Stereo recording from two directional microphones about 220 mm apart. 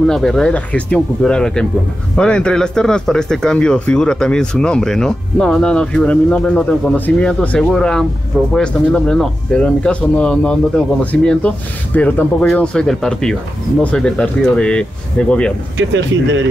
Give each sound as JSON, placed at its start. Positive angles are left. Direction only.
{"t": 0.0, "sound": "speech", "side_deg": 0}
{"t": 15.8, "sound": "speech", "side_deg": -55}